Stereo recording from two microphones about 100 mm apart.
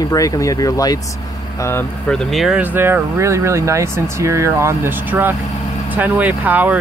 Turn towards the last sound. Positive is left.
turn(degrees=-15)  # may be behind; listen again after turning